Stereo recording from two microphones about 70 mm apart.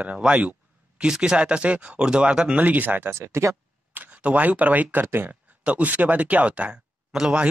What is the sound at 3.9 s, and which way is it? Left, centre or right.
Speech, right.